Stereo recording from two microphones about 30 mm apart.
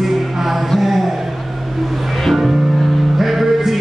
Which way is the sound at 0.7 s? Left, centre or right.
Centre.